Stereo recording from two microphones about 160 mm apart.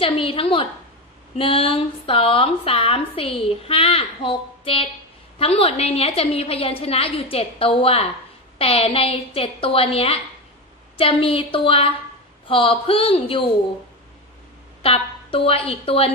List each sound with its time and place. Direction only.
0.0 s speech: 35° left (ahead or behind)
14.8 s a woman's voice: 35° left (ahead or behind)